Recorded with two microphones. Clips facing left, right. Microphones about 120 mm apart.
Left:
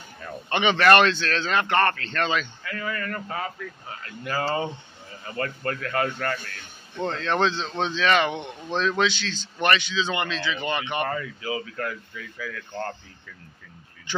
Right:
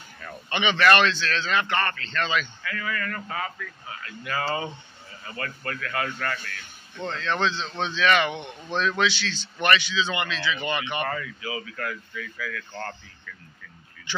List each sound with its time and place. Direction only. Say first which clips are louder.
0.5 s speech: left 2 dB; 45° left (ahead or behind)
9.0 s speech: left 1 dB; 40° left (ahead or behind)
11.1 s speech: left 2 dB; 30° left (ahead or behind)